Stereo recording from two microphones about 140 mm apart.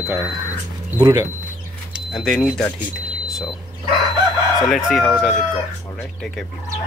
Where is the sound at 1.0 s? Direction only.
35° right (ahead or behind).